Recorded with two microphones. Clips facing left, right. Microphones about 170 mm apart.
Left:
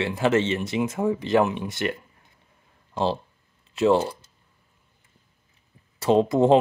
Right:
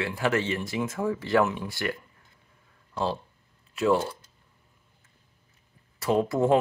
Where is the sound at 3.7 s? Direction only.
25° left (ahead or behind).